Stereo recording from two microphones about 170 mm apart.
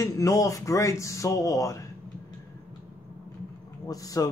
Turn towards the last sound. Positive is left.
turn(degrees=20)  # may be behind; listen again after turning